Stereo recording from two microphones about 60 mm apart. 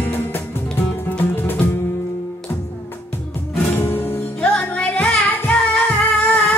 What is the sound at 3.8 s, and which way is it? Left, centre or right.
Music, left.